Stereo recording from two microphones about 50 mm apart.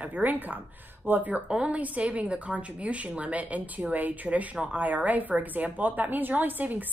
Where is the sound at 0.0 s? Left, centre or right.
Right.